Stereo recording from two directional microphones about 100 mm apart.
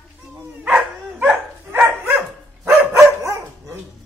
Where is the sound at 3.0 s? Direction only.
30° right (ahead or behind).